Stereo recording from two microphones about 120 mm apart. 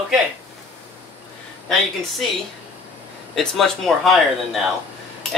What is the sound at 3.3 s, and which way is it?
Speech, centre (ahead or behind).